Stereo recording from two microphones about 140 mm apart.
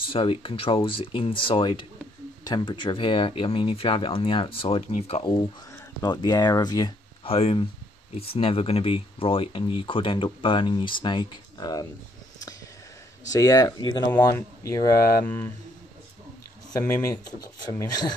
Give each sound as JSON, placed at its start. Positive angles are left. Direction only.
{"t": 0.1, "sound": "speech", "side_deg": 40}
{"t": 6.0, "sound": "speech", "side_deg": 30}
{"t": 7.2, "sound": "speech", "side_deg": 40}
{"t": 13.3, "sound": "speech", "side_deg": 25}
{"t": 15.2, "sound": "speech", "side_deg": 15}
{"t": 16.7, "sound": "speech", "side_deg": 20}